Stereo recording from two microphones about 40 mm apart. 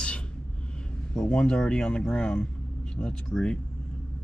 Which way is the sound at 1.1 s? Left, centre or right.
Left.